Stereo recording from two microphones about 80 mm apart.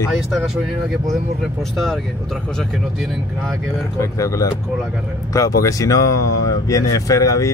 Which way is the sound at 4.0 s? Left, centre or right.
Left.